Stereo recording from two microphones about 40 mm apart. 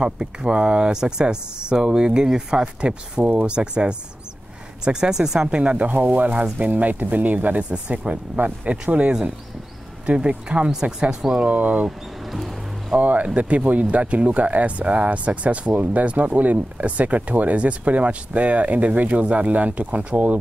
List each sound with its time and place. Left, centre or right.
0.0 s speech: right
5.5 s speech: right
7.7 s speech: right
10.7 s speech: centre
11.4 s speech: right
13.0 s speech: right